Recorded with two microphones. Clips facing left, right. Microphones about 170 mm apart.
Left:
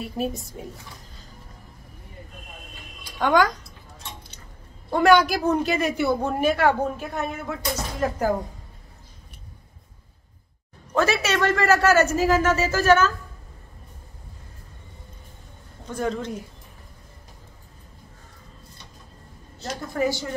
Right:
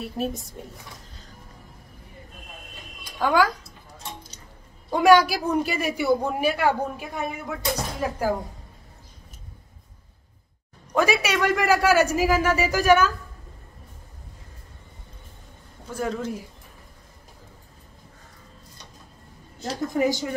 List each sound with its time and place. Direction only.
0.0 s speech: centre (ahead or behind)
3.2 s speech: 5° right (ahead or behind)
4.9 s a woman's voice: 10° right (ahead or behind)
10.9 s a woman's voice: 15° right (ahead or behind)
15.9 s speech: 5° right (ahead or behind)
19.9 s a woman's voice: 15° right (ahead or behind)